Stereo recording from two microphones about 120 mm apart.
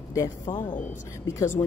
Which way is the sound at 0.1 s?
25° left (ahead or behind).